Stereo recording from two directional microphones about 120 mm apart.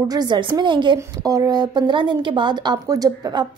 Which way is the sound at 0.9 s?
30° right (ahead or behind).